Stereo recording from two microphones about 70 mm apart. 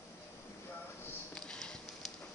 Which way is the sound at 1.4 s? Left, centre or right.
Centre.